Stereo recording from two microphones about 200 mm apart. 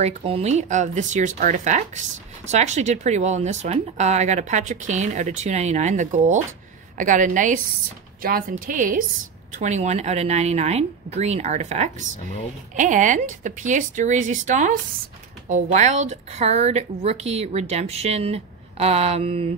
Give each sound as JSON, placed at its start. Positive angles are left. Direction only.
{"t": 0.0, "sound": "a woman's voice", "side_deg": -30}